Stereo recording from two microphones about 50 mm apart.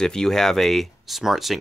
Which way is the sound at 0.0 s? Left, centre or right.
Centre.